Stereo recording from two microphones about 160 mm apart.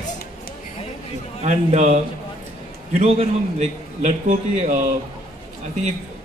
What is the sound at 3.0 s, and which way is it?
A man's voice, 40° right (ahead or behind).